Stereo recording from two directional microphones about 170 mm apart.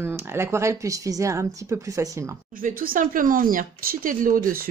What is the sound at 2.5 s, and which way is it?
Speech, 55° right (ahead or behind).